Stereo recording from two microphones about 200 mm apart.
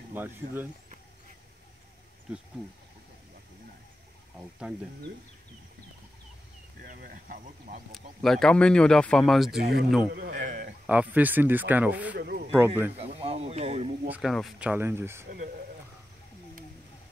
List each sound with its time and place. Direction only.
0.1 s speech: 10° right (ahead or behind)
4.4 s speech: 5° right (ahead or behind)
6.8 s speech: 45° right (ahead or behind)
7.9 s speech: centre (ahead or behind)
9.6 s speech: 50° right (ahead or behind)
10.3 s speech: 40° right (ahead or behind)
10.9 s speech: 10° right (ahead or behind)
12.2 s speech: 50° right (ahead or behind)
12.4 s speech: 10° right (ahead or behind)
12.9 s speech: 30° right (ahead or behind)
14.0 s speech: 5° right (ahead or behind)
15.2 s speech: 50° right (ahead or behind)